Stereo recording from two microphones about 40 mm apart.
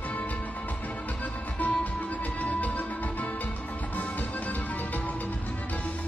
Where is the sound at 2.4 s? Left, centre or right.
Left.